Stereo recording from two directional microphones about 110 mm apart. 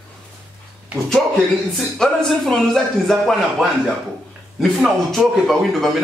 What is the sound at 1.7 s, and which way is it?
A man's voice, centre (ahead or behind).